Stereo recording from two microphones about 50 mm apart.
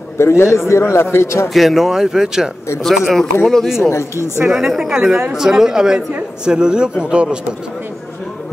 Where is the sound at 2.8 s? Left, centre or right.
Centre.